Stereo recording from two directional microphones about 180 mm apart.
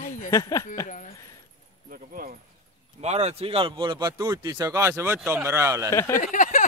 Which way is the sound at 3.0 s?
35° right (ahead or behind).